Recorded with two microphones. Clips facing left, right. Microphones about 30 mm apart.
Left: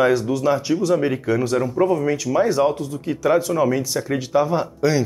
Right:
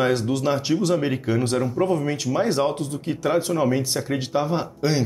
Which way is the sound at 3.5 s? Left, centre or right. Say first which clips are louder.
Left 2 dB; centre.